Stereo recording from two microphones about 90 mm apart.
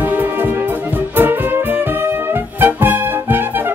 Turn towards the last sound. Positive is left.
turn(degrees=-20)  # may be behind; listen again after turning